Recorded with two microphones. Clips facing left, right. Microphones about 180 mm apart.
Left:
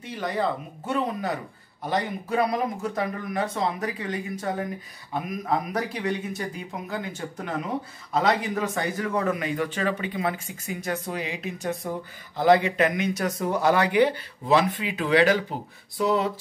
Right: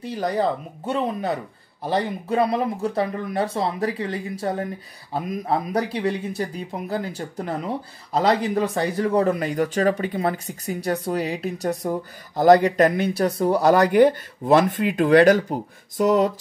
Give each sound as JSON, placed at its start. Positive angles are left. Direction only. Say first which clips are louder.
{"t": 0.0, "sound": "speech", "louder": "right 4 dB", "side_deg": -40}